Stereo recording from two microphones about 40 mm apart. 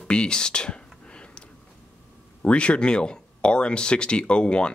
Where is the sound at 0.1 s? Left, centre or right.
Left.